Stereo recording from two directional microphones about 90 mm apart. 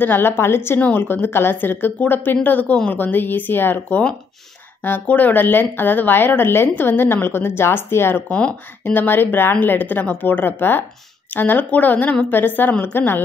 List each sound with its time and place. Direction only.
0.0 s a woman's voice: 20° left (ahead or behind)